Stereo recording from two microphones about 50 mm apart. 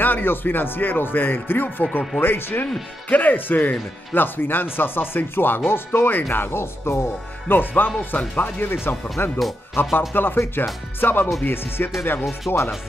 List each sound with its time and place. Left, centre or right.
0.0 s speech: left
12.4 s speech: left